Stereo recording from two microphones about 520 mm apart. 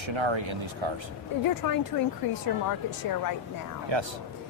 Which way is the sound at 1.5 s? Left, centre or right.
Left.